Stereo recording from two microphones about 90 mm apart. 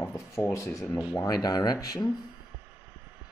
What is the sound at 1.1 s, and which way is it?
Speech, 45° left (ahead or behind).